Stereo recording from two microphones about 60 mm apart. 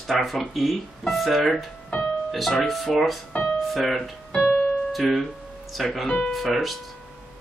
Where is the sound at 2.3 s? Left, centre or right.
Centre.